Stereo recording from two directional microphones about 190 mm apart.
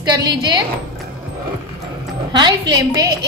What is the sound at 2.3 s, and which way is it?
Speech, 25° right (ahead or behind).